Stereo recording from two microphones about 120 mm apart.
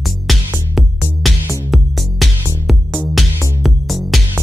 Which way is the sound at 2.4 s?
25° right (ahead or behind).